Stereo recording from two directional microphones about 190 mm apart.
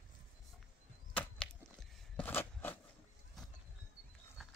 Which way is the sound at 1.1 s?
10° left (ahead or behind).